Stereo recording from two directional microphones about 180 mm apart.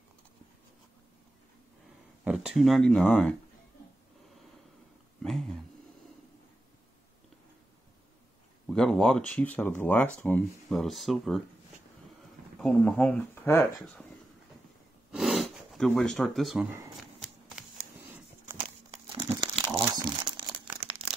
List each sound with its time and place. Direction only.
2.2 s speech: 5° right (ahead or behind)
8.6 s speech: 5° left (ahead or behind)
12.5 s speech: 10° left (ahead or behind)
15.0 s gasp: centre (ahead or behind)
18.9 s crumpling: 25° right (ahead or behind)